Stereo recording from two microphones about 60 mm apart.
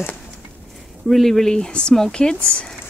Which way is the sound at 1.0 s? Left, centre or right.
Centre.